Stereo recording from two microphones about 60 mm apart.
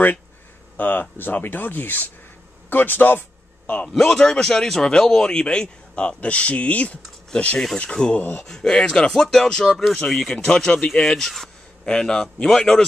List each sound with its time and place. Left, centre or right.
0.7 s speech: left
3.9 s speech: centre